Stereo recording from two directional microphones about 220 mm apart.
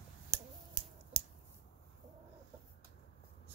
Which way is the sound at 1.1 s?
30° right (ahead or behind).